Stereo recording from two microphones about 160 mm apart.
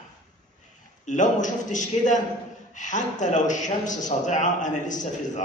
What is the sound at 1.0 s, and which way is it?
A man's voice, 50° left (ahead or behind).